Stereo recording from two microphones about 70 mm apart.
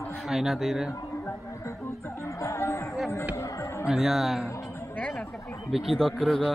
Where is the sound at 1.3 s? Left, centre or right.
Left.